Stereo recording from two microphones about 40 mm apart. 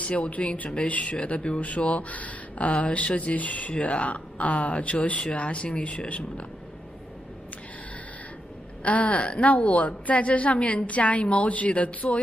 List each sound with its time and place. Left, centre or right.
0.0 s a woman's voice: left
8.8 s a woman's voice: left